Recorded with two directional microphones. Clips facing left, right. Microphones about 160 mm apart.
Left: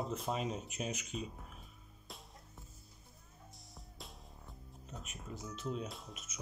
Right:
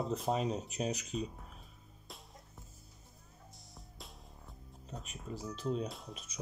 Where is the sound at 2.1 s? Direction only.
Centre (ahead or behind).